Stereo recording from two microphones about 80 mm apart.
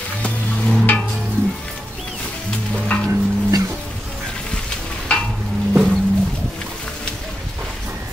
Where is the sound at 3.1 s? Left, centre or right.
Right.